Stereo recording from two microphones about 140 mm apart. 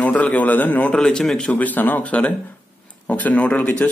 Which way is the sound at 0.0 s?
10° left (ahead or behind).